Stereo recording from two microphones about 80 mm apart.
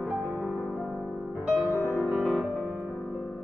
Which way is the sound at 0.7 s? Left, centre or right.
Centre.